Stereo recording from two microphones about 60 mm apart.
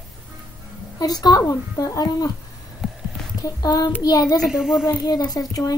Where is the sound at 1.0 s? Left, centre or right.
Left.